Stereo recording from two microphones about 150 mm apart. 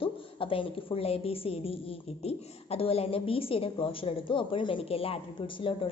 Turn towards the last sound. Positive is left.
turn(degrees=35)  # may be behind; listen again after turning